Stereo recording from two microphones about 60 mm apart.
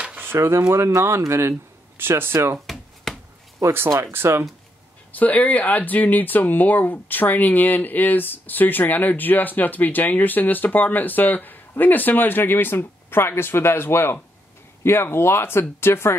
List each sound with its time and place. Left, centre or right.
0.2 s speech: right
2.0 s speech: right
2.6 s a sound: centre
4.0 s speech: right
5.1 s speech: left